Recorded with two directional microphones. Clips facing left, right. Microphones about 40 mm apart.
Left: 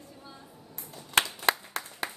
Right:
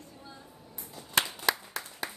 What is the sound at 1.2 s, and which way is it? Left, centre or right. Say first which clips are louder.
Clapping: left 3 dB; left.